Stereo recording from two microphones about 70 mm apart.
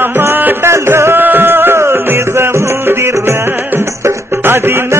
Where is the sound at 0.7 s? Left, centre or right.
Right.